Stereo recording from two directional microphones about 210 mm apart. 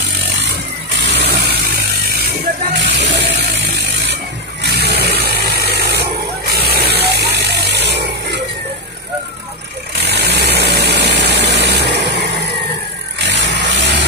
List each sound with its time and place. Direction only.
1.0 s vehicle: 50° right (ahead or behind)
2.8 s a sound: 55° right (ahead or behind)
4.6 s vehicle: 50° right (ahead or behind)
10.0 s vehicle: 55° right (ahead or behind)